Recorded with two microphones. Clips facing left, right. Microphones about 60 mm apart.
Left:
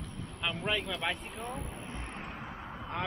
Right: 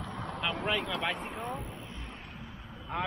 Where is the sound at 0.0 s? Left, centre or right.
Right.